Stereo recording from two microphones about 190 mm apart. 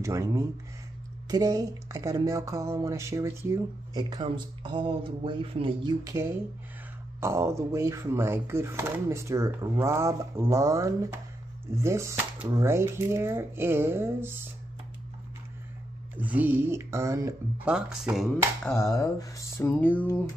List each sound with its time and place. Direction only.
0.0 s speech: 15° right (ahead or behind)
1.3 s a sound: 20° right (ahead or behind)
7.2 s speech: 15° right (ahead or behind)
16.2 s speech: 10° right (ahead or behind)
17.6 s speech: 5° right (ahead or behind)
18.9 s speech: 15° left (ahead or behind)